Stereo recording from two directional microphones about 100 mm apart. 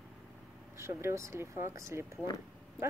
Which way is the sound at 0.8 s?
25° right (ahead or behind).